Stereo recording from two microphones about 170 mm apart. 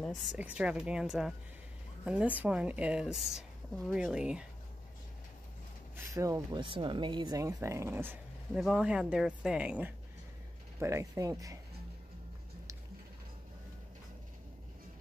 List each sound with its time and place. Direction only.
0.3 s a woman's voice: 5° right (ahead or behind)
5.9 s a woman's voice: 20° right (ahead or behind)